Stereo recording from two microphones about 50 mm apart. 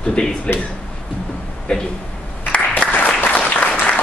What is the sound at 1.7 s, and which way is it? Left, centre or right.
Speech, left.